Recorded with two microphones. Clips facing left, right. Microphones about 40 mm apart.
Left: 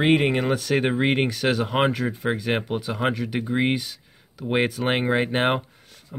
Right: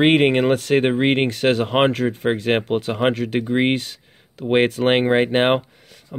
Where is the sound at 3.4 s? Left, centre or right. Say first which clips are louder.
Right 3 dB; right.